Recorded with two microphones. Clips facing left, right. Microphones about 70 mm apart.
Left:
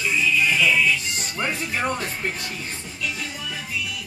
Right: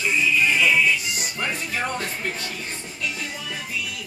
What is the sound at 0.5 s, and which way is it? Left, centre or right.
Music, centre.